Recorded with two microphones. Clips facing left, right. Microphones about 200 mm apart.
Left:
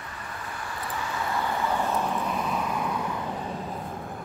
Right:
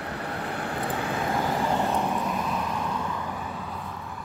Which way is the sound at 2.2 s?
Centre (ahead or behind).